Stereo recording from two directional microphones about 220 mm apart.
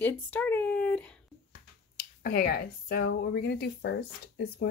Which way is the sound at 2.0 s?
45° left (ahead or behind).